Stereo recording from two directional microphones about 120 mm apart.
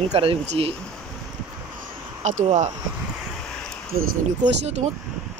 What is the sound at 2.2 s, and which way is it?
Speech, 80° right.